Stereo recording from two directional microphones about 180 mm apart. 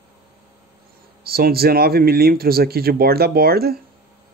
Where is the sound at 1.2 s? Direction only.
60° right (ahead or behind).